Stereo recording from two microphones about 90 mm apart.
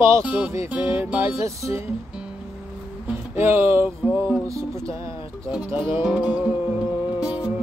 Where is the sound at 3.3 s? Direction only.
25° right (ahead or behind).